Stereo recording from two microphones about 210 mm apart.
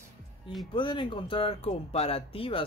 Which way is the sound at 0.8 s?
25° left (ahead or behind).